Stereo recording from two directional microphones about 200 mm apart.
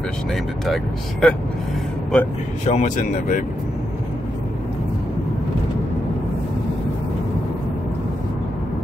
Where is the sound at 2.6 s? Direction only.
35° left (ahead or behind).